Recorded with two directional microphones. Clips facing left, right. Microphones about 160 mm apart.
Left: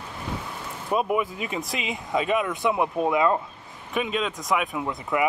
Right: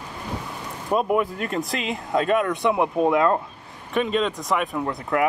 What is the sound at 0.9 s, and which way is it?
Speech, centre (ahead or behind).